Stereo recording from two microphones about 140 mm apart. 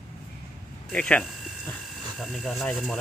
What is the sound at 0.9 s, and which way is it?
Speech, 5° left (ahead or behind).